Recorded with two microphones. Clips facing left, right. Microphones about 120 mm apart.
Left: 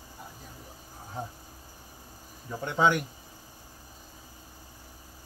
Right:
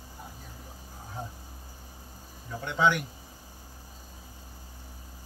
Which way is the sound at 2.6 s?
40° left (ahead or behind).